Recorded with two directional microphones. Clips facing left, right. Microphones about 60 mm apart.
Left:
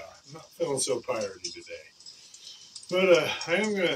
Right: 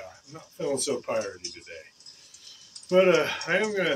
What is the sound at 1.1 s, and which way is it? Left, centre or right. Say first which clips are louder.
Speech: right 5 dB; right.